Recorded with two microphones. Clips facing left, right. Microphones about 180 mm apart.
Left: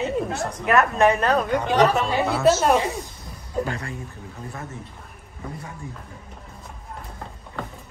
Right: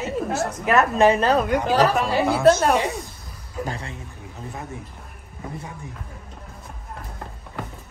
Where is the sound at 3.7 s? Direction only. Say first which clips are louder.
Left 1 dB; 25° right (ahead or behind).